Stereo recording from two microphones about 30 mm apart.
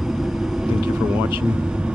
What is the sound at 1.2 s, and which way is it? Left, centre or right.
Speech, right.